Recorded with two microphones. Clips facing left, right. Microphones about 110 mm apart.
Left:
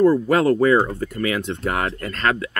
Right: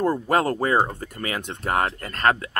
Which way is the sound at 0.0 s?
45° right (ahead or behind).